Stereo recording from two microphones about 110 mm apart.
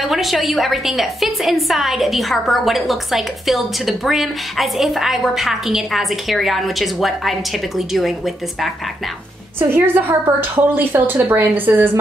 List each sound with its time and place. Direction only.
0.0 s a woman's voice: centre (ahead or behind)
9.6 s a woman's voice: 20° right (ahead or behind)